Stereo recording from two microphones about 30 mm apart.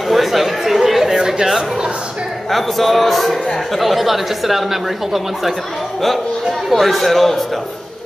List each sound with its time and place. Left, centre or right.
0.1 s chatter: centre
1.1 s a sound: centre
2.5 s speech: centre
6.7 s speech: centre